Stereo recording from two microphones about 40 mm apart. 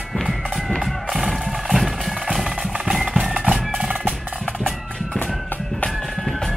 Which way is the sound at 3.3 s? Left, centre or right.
Right.